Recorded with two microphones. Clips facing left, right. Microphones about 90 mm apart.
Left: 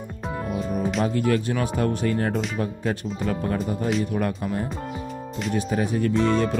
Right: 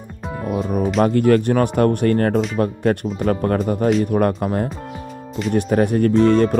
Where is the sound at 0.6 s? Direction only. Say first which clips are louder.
Right 7 dB; 55° right (ahead or behind).